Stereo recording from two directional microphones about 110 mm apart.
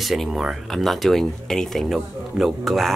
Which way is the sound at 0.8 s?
Centre (ahead or behind).